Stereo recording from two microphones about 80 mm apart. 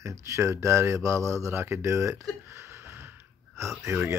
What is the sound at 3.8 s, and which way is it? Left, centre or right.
Speech, right.